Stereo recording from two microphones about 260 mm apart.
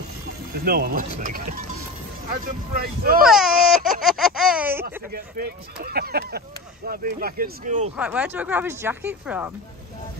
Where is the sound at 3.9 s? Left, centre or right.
Centre.